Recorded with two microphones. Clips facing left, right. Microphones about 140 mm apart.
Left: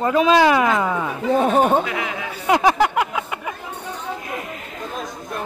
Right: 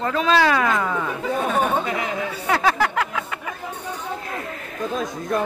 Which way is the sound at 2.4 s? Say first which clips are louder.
Left 5 dB; 15° left (ahead or behind).